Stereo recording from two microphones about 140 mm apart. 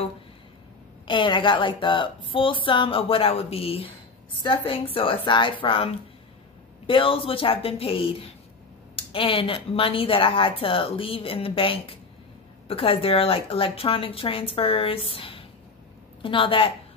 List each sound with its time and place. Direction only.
1.0 s a woman's voice: 35° left (ahead or behind)
6.9 s a woman's voice: 40° left (ahead or behind)